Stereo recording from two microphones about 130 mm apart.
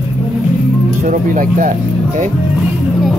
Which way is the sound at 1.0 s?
90° right.